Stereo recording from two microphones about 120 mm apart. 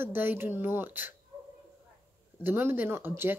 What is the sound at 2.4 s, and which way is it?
Speech, 20° right (ahead or behind).